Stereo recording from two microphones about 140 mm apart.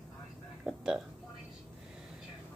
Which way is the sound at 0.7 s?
5° right (ahead or behind).